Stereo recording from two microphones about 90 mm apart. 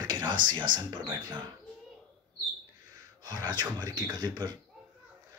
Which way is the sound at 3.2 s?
45° right (ahead or behind).